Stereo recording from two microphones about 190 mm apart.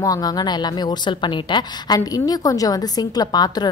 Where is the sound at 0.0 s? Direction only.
20° left (ahead or behind).